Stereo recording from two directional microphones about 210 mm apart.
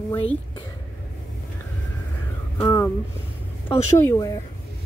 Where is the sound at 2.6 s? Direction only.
10° left (ahead or behind).